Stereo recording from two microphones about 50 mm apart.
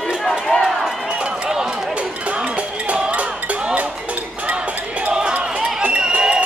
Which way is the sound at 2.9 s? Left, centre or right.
Right.